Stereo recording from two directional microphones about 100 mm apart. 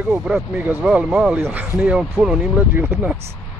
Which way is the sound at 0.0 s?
10° right (ahead or behind).